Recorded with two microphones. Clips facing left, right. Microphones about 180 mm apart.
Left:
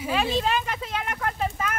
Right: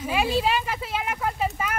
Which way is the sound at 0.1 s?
10° right (ahead or behind).